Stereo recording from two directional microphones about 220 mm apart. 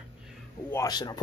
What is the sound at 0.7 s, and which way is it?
Speech, 15° left (ahead or behind).